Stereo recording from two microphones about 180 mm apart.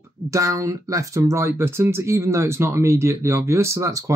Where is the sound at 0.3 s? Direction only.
20° right (ahead or behind).